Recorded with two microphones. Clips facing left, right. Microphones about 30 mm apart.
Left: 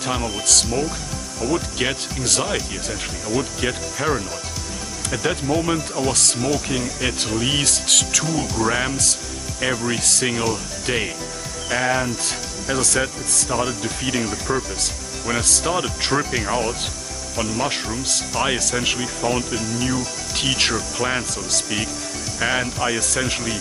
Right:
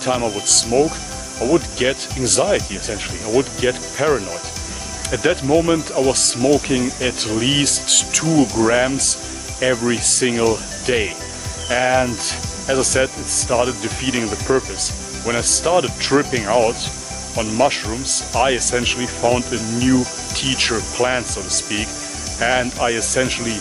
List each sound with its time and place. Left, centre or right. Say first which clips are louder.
0.0 s speech: right 4 dB; centre
0.7 s speech: right 7 dB; centre
1.4 s speech: right 6 dB; right
1.8 s speech: right 4 dB; centre
5.2 s speech: right 6 dB; centre
7.7 s speech: even; centre
17.6 s speech: right 6 dB; centre
20.3 s speech: right 1 dB; centre